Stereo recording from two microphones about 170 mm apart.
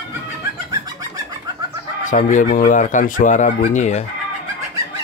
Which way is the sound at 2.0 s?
50° left (ahead or behind).